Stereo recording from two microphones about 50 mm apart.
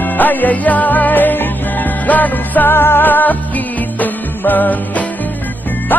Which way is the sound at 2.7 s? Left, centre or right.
Left.